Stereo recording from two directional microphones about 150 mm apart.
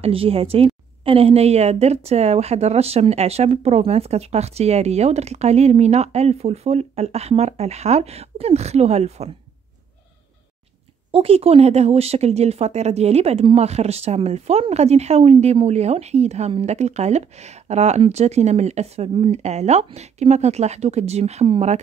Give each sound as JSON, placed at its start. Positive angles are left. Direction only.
{"t": 0.0, "sound": "a woman's voice", "side_deg": -40}
{"t": 11.1, "sound": "speech", "side_deg": -40}